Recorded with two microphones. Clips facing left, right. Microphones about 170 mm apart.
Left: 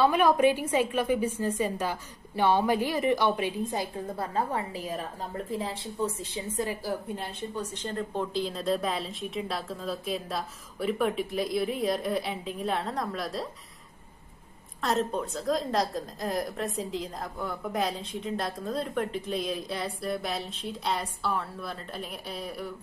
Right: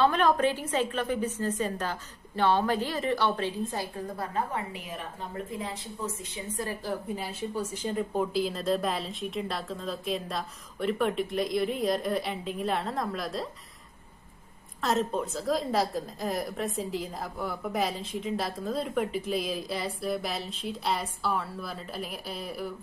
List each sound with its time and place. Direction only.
0.0 s a woman's voice: 10° left (ahead or behind); by 6.6 s 30° left (ahead or behind)
6.6 s a woman's voice: 10° left (ahead or behind)
7.2 s a woman's voice: 5° right (ahead or behind)
14.8 s a woman's voice: centre (ahead or behind)